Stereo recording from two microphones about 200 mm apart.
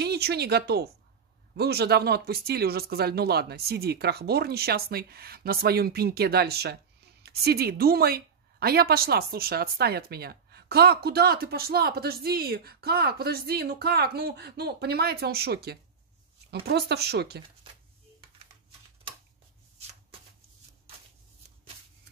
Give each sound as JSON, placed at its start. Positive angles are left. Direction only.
{"t": 0.0, "sound": "a woman's voice", "side_deg": -55}